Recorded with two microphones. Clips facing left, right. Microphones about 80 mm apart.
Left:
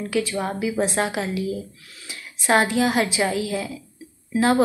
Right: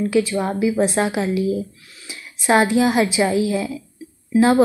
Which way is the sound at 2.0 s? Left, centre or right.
Centre.